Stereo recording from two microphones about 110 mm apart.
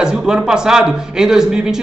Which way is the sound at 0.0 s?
5° right (ahead or behind).